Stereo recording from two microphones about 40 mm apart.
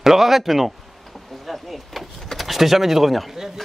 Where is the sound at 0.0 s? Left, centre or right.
Centre.